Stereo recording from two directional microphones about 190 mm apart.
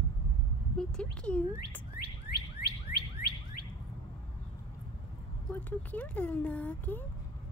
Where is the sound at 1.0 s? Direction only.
5° left (ahead or behind).